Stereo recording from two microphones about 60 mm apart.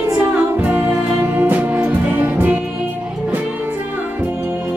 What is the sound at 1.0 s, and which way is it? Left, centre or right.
Music, right.